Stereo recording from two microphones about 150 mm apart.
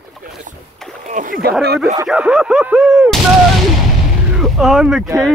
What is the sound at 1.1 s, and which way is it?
Speech, 65° right (ahead or behind).